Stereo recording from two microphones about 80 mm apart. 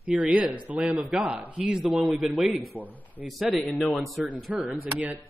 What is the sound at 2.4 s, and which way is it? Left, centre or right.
Speech, centre.